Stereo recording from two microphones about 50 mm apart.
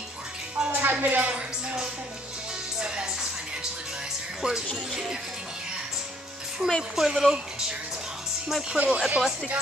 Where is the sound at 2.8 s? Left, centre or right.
Centre.